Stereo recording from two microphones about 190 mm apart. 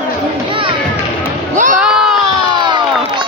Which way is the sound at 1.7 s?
Centre (ahead or behind).